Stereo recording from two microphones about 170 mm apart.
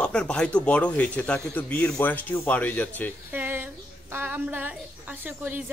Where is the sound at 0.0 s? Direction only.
5° left (ahead or behind).